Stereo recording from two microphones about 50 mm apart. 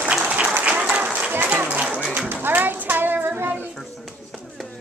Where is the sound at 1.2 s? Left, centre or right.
Right.